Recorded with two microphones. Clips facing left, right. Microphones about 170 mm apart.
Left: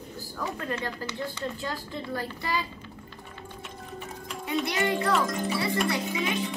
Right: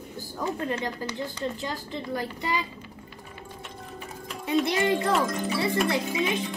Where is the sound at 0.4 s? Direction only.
20° right (ahead or behind).